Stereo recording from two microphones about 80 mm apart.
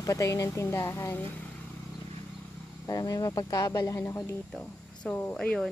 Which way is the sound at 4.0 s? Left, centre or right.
Left.